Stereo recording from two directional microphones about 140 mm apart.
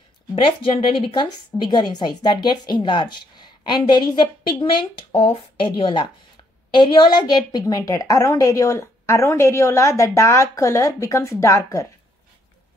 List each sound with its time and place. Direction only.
0.4 s a woman's voice: 40° left (ahead or behind); by 11.9 s 20° left (ahead or behind)